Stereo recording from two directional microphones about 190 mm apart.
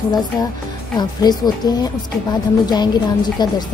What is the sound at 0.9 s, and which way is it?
Speech, 20° left (ahead or behind).